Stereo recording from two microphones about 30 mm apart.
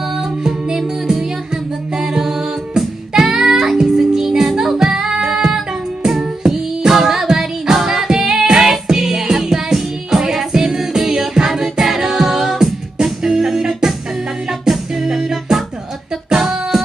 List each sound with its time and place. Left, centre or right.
0.5 s music: centre
11.8 s a capella: centre
12.9 s music: right
15.0 s music: centre